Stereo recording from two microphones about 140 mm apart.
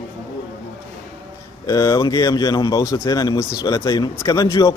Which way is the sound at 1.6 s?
25° left (ahead or behind).